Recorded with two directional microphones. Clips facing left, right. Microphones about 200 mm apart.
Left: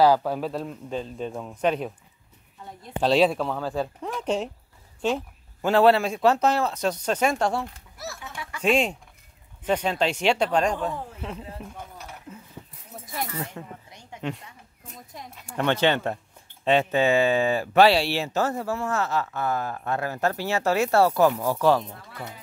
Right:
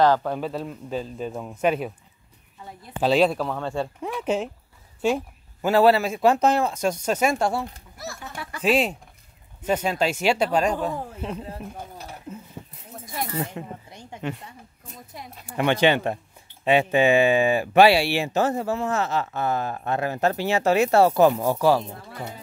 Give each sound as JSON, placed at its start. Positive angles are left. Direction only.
{"t": 0.0, "sound": "speech", "side_deg": 5}
{"t": 3.0, "sound": "speech", "side_deg": 0}
{"t": 6.3, "sound": "speech", "side_deg": -15}
{"t": 8.4, "sound": "a sound", "side_deg": -35}
{"t": 8.6, "sound": "speech", "side_deg": -5}
{"t": 11.4, "sound": "speech", "side_deg": -35}
{"t": 13.0, "sound": "a sound", "side_deg": 0}
{"t": 13.3, "sound": "speech", "side_deg": -25}
{"t": 15.4, "sound": "speech", "side_deg": -10}
{"t": 21.5, "sound": "speech", "side_deg": -10}
{"t": 21.8, "sound": "speech", "side_deg": -30}